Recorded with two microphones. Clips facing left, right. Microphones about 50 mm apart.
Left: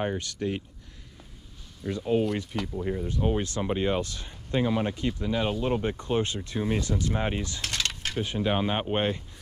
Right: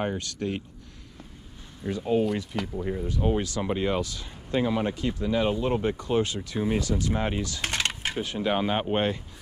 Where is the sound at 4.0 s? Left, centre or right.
Left.